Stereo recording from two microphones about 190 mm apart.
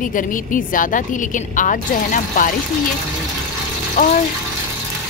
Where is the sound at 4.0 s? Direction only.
45° left (ahead or behind).